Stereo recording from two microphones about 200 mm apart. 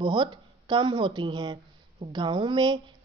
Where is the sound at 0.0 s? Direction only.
25° right (ahead or behind).